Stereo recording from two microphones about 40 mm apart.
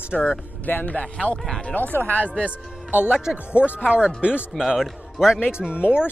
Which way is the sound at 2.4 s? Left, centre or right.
Right.